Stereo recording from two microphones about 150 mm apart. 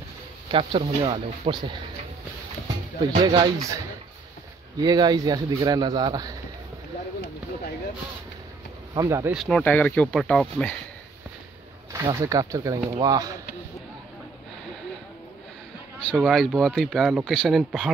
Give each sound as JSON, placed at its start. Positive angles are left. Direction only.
{"t": 0.5, "sound": "speech", "side_deg": -35}
{"t": 3.0, "sound": "speech", "side_deg": -30}
{"t": 4.8, "sound": "speech", "side_deg": -25}
{"t": 8.9, "sound": "speech", "side_deg": -20}
{"t": 9.3, "sound": "speech", "side_deg": 0}
{"t": 11.9, "sound": "speech", "side_deg": -20}
{"t": 16.1, "sound": "speech", "side_deg": 0}